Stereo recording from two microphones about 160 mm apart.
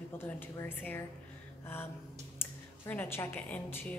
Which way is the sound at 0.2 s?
15° left (ahead or behind).